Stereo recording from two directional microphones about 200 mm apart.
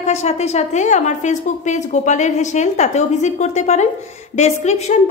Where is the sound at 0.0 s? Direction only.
35° left (ahead or behind).